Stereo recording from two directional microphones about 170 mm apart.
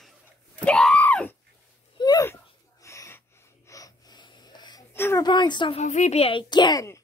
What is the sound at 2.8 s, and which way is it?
Snort, 15° left (ahead or behind).